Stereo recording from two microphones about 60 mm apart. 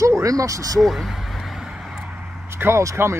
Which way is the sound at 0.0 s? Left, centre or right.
Right.